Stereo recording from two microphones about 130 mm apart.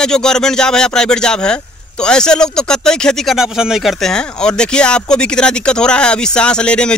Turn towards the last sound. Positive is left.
turn(degrees=5)  # may be behind; listen again after turning